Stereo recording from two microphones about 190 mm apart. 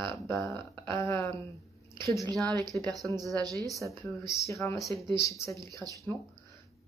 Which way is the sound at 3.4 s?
20° right (ahead or behind).